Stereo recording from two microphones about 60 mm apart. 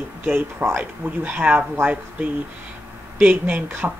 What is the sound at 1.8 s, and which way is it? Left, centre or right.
Speech, right.